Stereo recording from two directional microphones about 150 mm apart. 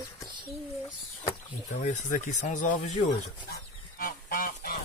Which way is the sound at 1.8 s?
55° left (ahead or behind).